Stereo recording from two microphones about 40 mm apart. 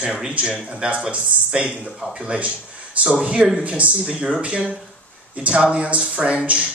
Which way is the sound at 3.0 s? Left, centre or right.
Right.